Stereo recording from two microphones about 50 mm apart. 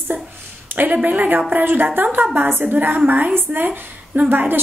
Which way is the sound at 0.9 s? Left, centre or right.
Right.